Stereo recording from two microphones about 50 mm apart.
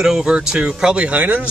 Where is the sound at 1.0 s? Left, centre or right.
Right.